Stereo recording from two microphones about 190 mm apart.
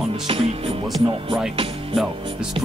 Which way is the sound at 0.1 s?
30° right (ahead or behind).